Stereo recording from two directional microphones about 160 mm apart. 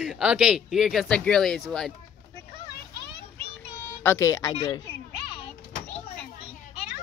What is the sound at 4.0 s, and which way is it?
Speech, 15° left (ahead or behind).